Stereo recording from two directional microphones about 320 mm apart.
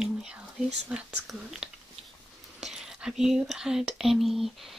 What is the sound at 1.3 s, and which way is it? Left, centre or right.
Whispering, centre.